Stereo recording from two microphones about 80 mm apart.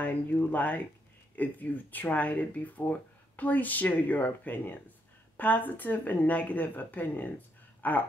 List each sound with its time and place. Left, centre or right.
0.0 s speech: centre